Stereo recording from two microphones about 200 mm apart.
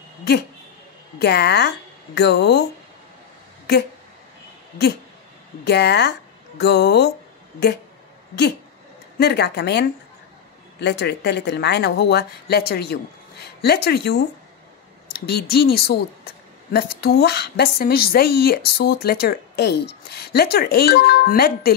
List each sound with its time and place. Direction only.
1.2 s speech: 55° left (ahead or behind)
5.7 s speech: 55° left (ahead or behind)
9.2 s a woman's voice: 55° left (ahead or behind)
17.0 s a woman's voice: 55° left (ahead or behind)